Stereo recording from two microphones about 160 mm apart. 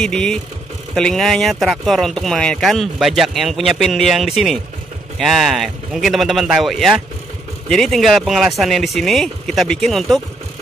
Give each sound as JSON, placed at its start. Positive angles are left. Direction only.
{"t": 0.0, "sound": "speech", "side_deg": 5}